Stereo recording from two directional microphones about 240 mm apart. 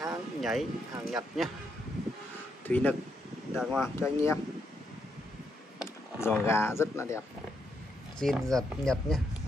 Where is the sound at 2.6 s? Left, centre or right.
Centre.